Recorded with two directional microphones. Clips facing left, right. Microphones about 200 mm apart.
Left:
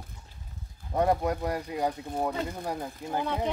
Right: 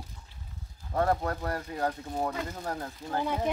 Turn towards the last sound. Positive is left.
turn(degrees=10)  # may be behind; listen again after turning